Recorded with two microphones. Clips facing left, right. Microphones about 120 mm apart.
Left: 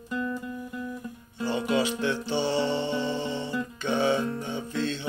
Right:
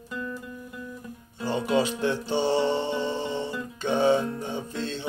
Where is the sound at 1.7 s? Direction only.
40° right (ahead or behind).